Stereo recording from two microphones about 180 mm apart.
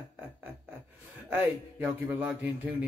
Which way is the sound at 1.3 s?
10° right (ahead or behind).